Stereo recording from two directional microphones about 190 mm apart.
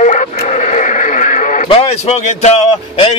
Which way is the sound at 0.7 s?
40° left (ahead or behind).